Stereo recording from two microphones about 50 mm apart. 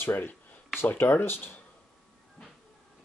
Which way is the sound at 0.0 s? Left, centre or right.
Left.